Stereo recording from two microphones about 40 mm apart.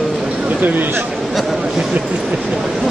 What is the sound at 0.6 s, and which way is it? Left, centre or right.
Speech, right.